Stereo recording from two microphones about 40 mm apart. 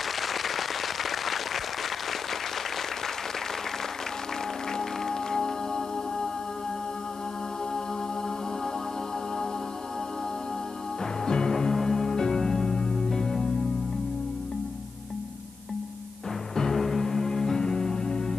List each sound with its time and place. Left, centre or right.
0.2 s applause: centre
4.7 s music: centre
11.2 s music: centre
16.5 s music: centre